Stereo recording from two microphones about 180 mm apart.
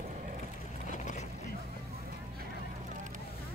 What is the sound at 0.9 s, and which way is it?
Boat, 45° left (ahead or behind).